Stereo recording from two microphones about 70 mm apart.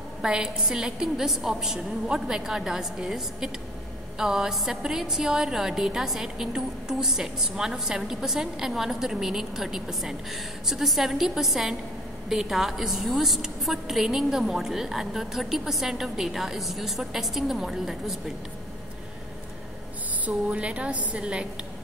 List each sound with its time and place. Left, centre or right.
0.2 s a woman's voice: centre
20.2 s a woman's voice: centre